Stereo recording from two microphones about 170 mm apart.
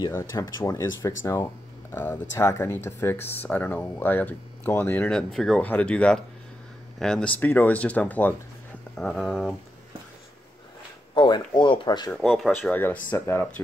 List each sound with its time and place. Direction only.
0.1 s speech: 20° left (ahead or behind); by 9.6 s centre (ahead or behind)
11.1 s speech: 25° left (ahead or behind)
12.1 s speech: centre (ahead or behind)